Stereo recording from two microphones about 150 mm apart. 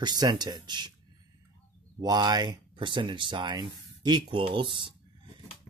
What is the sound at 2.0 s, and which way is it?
Speech, 25° right (ahead or behind).